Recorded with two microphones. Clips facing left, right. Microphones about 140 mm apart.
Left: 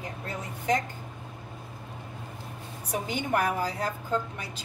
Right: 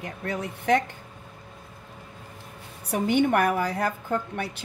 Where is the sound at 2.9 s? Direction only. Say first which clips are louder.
Right 8 dB; 65° right (ahead or behind).